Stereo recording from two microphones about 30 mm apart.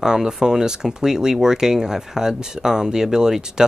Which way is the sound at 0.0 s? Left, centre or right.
Centre.